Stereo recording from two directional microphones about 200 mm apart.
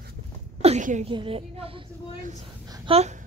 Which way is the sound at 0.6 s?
35° right (ahead or behind).